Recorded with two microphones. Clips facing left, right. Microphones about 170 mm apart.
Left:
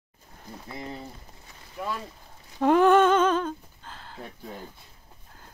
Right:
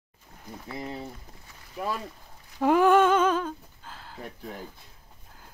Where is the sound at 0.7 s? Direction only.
5° right (ahead or behind).